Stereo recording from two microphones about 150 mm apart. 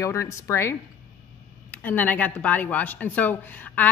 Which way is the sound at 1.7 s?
10° left (ahead or behind).